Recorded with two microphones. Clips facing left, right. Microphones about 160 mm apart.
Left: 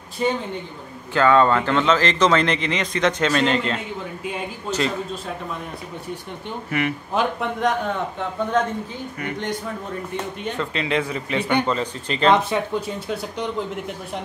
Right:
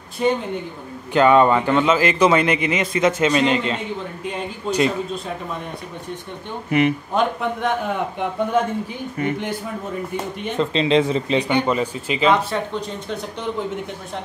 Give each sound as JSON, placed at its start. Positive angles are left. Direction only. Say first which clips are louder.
{"t": 0.2, "sound": "a man's voice", "louder": "right 3 dB", "side_deg": 0}
{"t": 1.1, "sound": "a man's voice", "louder": "right 2 dB", "side_deg": -20}
{"t": 4.6, "sound": "a man's voice", "louder": "right 5 dB", "side_deg": -15}
{"t": 6.7, "sound": "speech", "louder": "right 6 dB", "side_deg": -20}
{"t": 7.2, "sound": "a man's voice", "louder": "left 1 dB", "side_deg": 0}
{"t": 8.2, "sound": "a man's voice", "louder": "right 2 dB", "side_deg": -10}
{"t": 9.2, "sound": "speech", "louder": "right 8 dB", "side_deg": -25}
{"t": 10.6, "sound": "a man's voice", "louder": "right 7 dB", "side_deg": -25}
{"t": 12.4, "sound": "speech", "louder": "left 1 dB", "side_deg": 5}